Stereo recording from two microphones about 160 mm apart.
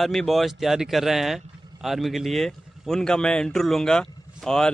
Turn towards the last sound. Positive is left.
turn(degrees=5)  # may be behind; listen again after turning